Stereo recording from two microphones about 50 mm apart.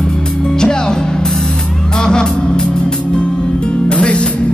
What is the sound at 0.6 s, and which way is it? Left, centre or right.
Music, centre.